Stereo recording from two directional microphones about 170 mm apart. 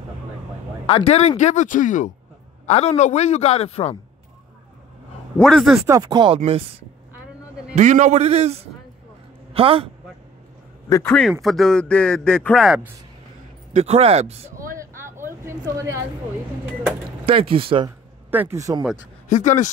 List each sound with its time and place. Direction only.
0.8 s speech: 35° left (ahead or behind)
2.6 s a man's voice: 35° left (ahead or behind)
5.4 s a man's voice: centre (ahead or behind)
5.9 s a man's voice: 20° right (ahead or behind)
10.9 s a man's voice: 15° left (ahead or behind); by 12.9 s 5° right (ahead or behind)
13.7 s a man's voice: 35° right (ahead or behind)
14.8 s a sound: 15° right (ahead or behind)
15.4 s speech: 15° right (ahead or behind)
17.3 s a man's voice: 30° right (ahead or behind)
17.8 s speech: 10° right (ahead or behind)
19.2 s speech: 45° left (ahead or behind)